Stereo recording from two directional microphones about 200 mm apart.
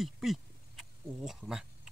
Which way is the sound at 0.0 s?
Centre (ahead or behind).